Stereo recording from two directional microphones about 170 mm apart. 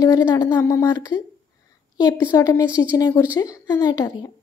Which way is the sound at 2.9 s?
20° left (ahead or behind).